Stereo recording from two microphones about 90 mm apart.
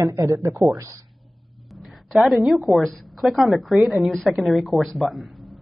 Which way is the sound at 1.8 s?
Centre (ahead or behind).